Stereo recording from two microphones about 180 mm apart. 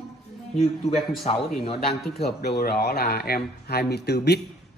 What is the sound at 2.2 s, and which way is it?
Speech, 65° left (ahead or behind).